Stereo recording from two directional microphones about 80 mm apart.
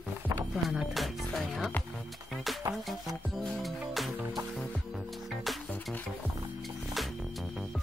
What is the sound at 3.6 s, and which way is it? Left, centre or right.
Music, centre.